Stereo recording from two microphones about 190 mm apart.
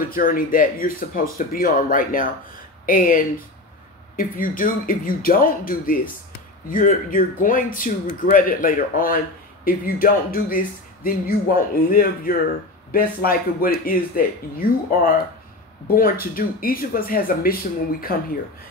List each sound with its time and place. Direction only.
0.1 s speech: 45° left (ahead or behind)
16.3 s speech: 50° left (ahead or behind)